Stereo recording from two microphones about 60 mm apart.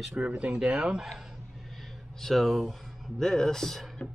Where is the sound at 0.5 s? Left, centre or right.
Centre.